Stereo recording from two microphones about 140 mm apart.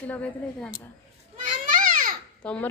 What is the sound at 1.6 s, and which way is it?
Children playing, 75° right (ahead or behind).